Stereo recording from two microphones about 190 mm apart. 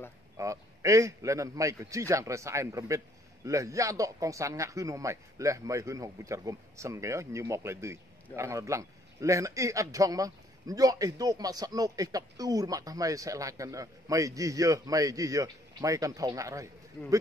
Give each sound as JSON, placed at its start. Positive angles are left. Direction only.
{"t": 0.4, "sound": "speech", "side_deg": -15}